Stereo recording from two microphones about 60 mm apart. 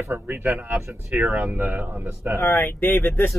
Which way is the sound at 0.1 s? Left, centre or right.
Right.